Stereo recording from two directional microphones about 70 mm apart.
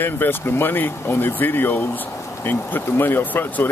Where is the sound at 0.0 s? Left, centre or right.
Left.